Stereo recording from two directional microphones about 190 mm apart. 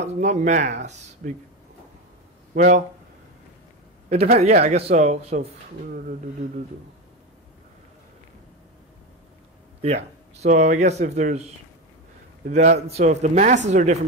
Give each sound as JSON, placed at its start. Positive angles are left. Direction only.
{"t": 0.0, "sound": "speech", "side_deg": -35}
{"t": 2.5, "sound": "speech", "side_deg": -40}
{"t": 4.4, "sound": "speech", "side_deg": -35}
{"t": 9.8, "sound": "speech", "side_deg": -35}